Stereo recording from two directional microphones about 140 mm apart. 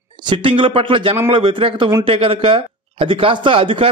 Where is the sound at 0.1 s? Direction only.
35° right (ahead or behind).